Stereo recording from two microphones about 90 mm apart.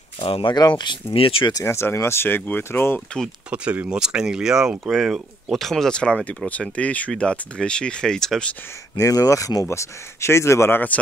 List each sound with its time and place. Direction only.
0.2 s speech: 80° left
0.6 s speech: 55° left (ahead or behind)
1.1 s speech: 90° left
1.5 s speech: 30° left (ahead or behind)
3.4 s speech: 15° right (ahead or behind); by 8.5 s 10° left (ahead or behind)
8.9 s speech: 40° left (ahead or behind)